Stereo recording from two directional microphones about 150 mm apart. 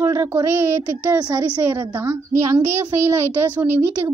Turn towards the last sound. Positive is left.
turn(degrees=-15)  # may be behind; listen again after turning